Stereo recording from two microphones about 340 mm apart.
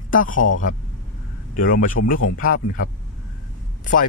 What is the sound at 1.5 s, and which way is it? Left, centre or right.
Speech, left.